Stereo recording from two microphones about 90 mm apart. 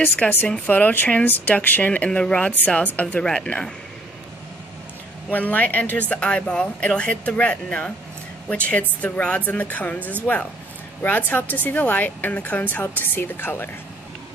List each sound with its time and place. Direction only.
0.5 s speech: 15° left (ahead or behind)
5.3 s speech: 15° left (ahead or behind)